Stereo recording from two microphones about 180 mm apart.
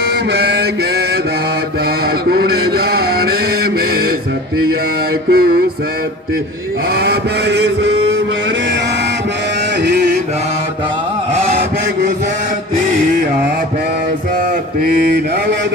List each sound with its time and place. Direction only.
0.3 s mantra: 65° right (ahead or behind)
2.2 s mantra: 60° right (ahead or behind)
5.3 s music: 55° right (ahead or behind)
7.0 s vehicle: 70° right (ahead or behind)
14.8 s mantra: 60° right (ahead or behind)